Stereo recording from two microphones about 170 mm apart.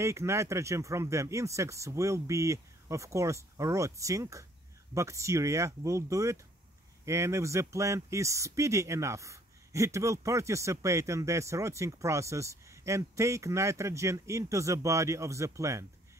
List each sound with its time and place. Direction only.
0.0 s speech: 15° right (ahead or behind)